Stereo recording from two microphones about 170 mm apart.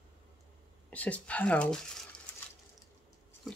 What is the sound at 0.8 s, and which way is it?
Speech, 10° left (ahead or behind).